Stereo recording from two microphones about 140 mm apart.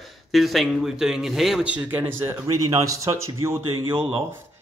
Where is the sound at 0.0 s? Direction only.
Centre (ahead or behind).